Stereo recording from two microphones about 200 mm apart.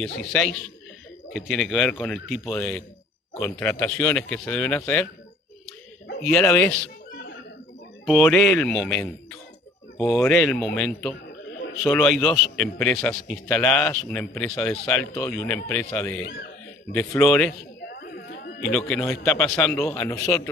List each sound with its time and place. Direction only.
0.3 s a man's voice: 5° left (ahead or behind)
6.2 s speech: 5° left (ahead or behind)
8.1 s a man's voice: centre (ahead or behind)
17.8 s a sound: 55° left (ahead or behind)
18.7 s a man's voice: 5° left (ahead or behind)